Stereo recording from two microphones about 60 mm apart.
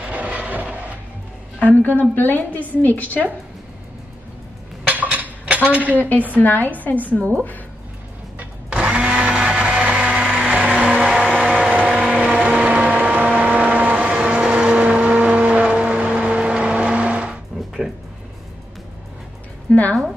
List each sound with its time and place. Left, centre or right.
0.0 s a sound: right
1.8 s a woman's voice: left
4.8 s dishes: right
5.9 s a woman's voice: left
8.4 s blender: centre
10.3 s a sound: right
11.7 s vehicle: right
14.1 s vehicle: centre
19.7 s a sound: left